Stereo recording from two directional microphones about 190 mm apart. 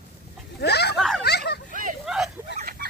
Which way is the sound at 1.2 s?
60° left (ahead or behind).